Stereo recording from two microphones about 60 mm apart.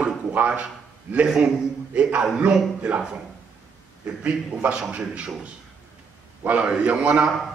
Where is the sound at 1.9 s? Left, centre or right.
Centre.